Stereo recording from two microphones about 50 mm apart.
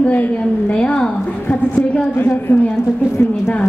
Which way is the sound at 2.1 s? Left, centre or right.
Left.